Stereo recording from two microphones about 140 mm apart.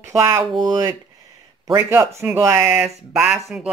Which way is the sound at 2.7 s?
5° right (ahead or behind).